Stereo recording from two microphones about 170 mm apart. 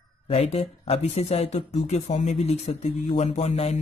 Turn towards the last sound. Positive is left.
turn(degrees=40)  # may be behind; listen again after turning